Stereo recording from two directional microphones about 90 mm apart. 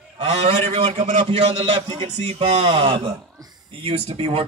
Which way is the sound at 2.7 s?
90° right.